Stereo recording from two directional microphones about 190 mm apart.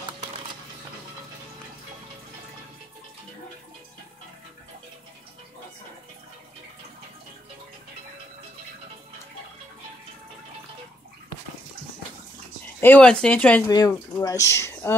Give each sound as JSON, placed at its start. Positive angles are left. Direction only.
{"t": 12.8, "sound": "speech", "side_deg": 5}
{"t": 13.7, "sound": "speech", "side_deg": 20}